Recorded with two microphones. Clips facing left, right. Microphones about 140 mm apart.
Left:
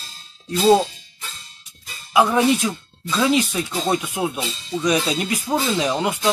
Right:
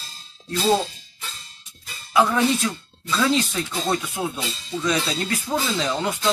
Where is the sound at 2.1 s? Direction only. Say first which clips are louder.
Left 3 dB; 15° left (ahead or behind).